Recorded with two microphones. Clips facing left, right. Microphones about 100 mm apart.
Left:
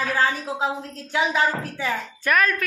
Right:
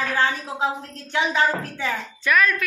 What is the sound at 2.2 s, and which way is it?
Speech, 45° left (ahead or behind).